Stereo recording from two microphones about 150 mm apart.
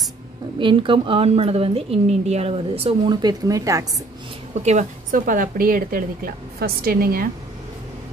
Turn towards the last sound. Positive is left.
turn(degrees=-80)